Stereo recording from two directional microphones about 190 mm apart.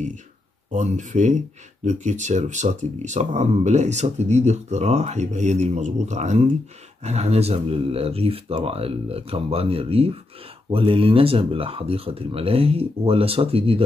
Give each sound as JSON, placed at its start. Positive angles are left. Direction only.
{"t": 0.7, "sound": "speech", "side_deg": -40}